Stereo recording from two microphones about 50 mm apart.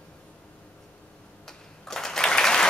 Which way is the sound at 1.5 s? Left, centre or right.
Centre.